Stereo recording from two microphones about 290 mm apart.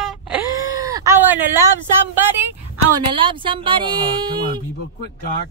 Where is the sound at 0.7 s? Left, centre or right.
Centre.